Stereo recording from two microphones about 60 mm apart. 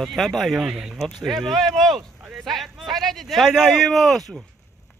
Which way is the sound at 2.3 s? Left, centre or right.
Centre.